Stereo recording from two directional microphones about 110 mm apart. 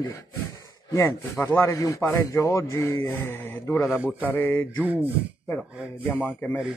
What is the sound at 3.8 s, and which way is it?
Speech, 10° right (ahead or behind).